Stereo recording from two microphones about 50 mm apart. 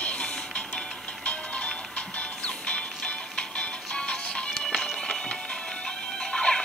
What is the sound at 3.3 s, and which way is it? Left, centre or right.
Music, left.